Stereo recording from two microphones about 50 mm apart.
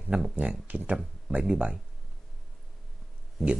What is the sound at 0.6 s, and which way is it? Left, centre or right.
Speech, right.